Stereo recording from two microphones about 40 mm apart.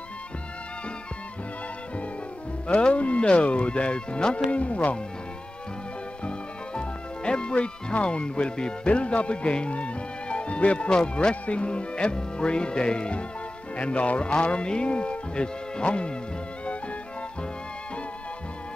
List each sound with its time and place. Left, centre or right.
2.7 s speech: left
6.2 s speech: left